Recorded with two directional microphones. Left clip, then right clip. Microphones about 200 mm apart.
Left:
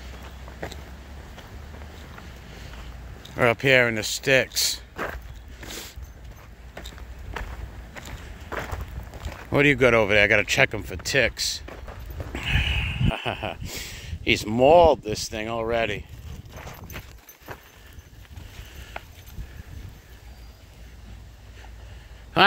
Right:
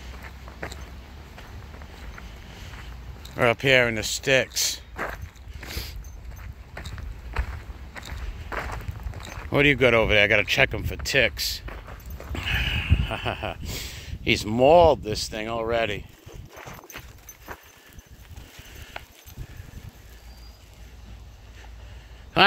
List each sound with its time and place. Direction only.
3.3 s speech: centre (ahead or behind)
4.9 s walk: 15° left (ahead or behind)
5.6 s a sound: centre (ahead or behind)
8.1 s walk: 5° left (ahead or behind)
9.3 s speech: centre (ahead or behind)
12.3 s a sound: centre (ahead or behind)
17.0 s clip-clop: 35° left (ahead or behind)
17.5 s a sound: 10° left (ahead or behind)
18.8 s clip-clop: centre (ahead or behind)